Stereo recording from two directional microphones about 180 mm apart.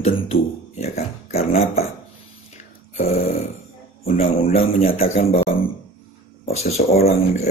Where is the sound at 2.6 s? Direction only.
40° left (ahead or behind).